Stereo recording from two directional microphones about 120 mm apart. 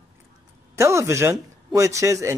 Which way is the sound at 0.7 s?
25° right (ahead or behind).